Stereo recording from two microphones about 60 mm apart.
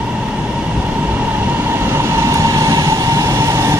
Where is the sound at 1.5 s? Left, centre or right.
Right.